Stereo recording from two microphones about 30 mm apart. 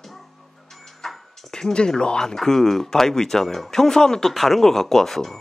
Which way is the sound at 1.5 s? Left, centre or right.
Left.